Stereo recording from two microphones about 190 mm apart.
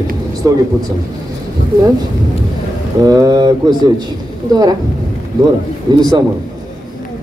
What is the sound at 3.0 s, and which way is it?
Speech, 20° right (ahead or behind).